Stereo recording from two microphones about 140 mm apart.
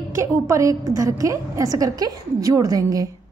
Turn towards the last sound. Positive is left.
turn(degrees=-25)  # may be behind; listen again after turning